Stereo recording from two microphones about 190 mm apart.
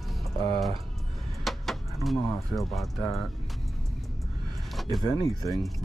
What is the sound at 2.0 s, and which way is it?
Speech, centre (ahead or behind).